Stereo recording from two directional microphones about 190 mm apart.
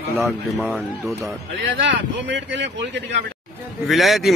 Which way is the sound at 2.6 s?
65° right (ahead or behind).